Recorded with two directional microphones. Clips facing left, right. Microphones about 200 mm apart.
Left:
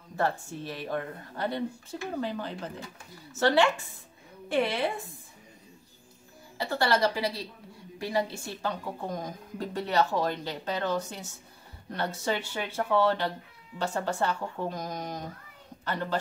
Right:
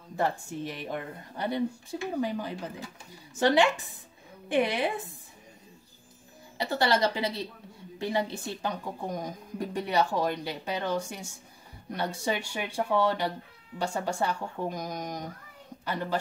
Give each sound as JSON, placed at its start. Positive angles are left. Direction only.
{"t": 0.1, "sound": "speech", "side_deg": -15}
{"t": 6.6, "sound": "a woman's voice", "side_deg": -20}